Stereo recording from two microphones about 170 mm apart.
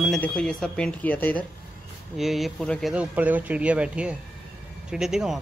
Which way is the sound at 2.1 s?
Centre (ahead or behind).